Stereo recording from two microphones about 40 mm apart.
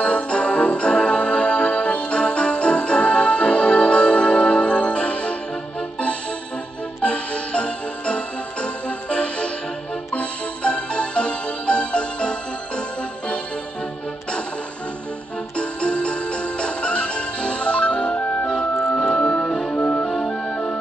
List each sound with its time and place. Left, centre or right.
0.0 s music: left
7.0 s music: left
15.5 s music: left
18.9 s music: left